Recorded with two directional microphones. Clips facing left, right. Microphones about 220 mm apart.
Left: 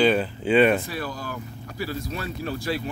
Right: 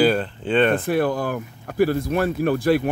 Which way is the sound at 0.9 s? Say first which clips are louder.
Right 11 dB; 55° right (ahead or behind).